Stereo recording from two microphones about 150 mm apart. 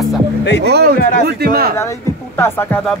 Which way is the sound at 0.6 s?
90° right.